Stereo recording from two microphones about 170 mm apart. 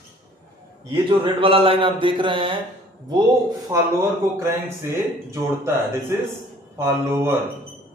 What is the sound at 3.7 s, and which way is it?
Speech, 15° right (ahead or behind).